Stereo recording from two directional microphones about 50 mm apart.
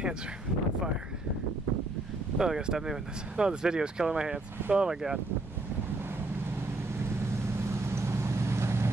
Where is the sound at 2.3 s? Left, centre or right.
Centre.